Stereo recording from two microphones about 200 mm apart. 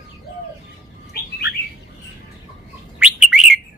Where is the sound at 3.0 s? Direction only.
5° right (ahead or behind).